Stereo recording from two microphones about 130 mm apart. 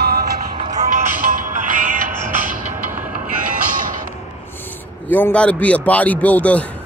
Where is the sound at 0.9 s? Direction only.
90° right.